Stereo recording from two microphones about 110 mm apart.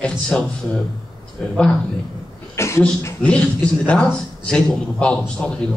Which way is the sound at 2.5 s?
25° left (ahead or behind).